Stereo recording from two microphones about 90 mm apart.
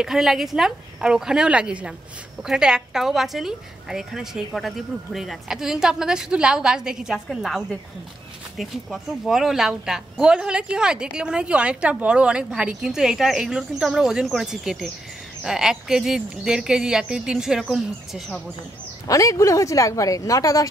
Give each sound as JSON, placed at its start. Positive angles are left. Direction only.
{"t": 0.0, "sound": "a woman's voice", "side_deg": -5}
{"t": 19.0, "sound": "speech", "side_deg": 40}